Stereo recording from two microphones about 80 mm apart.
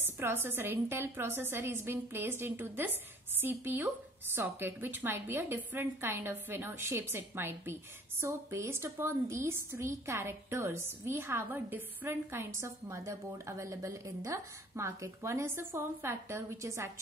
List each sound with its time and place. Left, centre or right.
0.0 s a woman's voice: right